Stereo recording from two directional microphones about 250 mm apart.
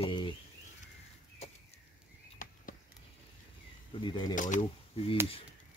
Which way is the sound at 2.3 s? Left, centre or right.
Left.